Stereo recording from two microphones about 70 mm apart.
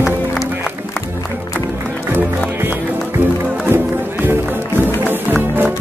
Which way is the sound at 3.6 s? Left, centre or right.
Right.